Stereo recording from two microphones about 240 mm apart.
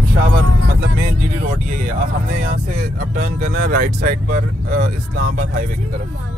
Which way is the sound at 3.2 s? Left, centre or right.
Right.